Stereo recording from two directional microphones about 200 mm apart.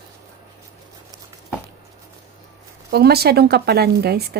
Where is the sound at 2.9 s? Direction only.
50° right (ahead or behind).